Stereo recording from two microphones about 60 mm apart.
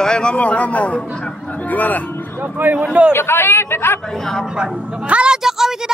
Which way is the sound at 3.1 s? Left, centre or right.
Left.